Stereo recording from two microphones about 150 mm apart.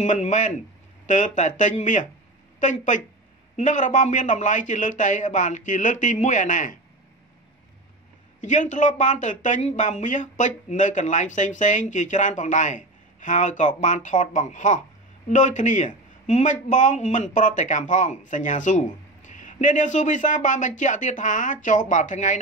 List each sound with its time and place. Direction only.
0.0 s speech: 55° left (ahead or behind)
8.4 s speech: 55° left (ahead or behind)